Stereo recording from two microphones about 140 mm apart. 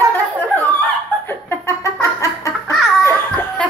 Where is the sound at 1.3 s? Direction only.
20° left (ahead or behind).